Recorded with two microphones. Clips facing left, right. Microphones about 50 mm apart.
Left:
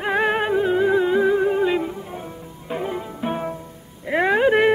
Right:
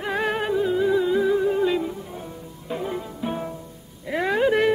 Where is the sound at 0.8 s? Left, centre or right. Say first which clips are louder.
Left 2 dB; left.